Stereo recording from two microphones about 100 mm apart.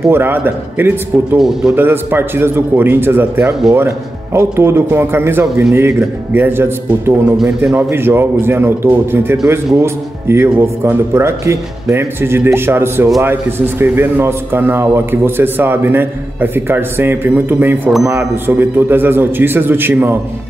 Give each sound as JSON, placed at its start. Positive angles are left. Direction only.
{"t": 0.1, "sound": "a man's voice", "side_deg": -20}
{"t": 1.4, "sound": "a man's voice", "side_deg": -5}
{"t": 1.8, "sound": "a man's voice", "side_deg": -20}
{"t": 7.3, "sound": "a man's voice", "side_deg": -5}
{"t": 7.7, "sound": "a man's voice", "side_deg": -25}